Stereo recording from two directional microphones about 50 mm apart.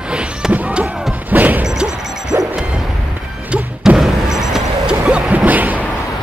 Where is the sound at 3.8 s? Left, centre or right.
Centre.